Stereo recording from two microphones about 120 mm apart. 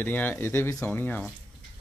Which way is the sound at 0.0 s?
15° left (ahead or behind).